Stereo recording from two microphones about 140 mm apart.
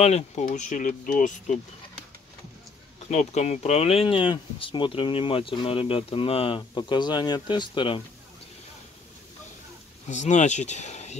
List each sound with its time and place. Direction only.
0.0 s speech: 50° left (ahead or behind)
0.5 s speech: 65° left (ahead or behind)
3.1 s speech: 55° left (ahead or behind); by 8.0 s 35° left (ahead or behind)
10.0 s speech: 60° left (ahead or behind)